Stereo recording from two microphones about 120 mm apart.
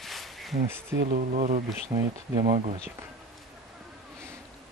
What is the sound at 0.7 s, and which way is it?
Speech, 20° right (ahead or behind).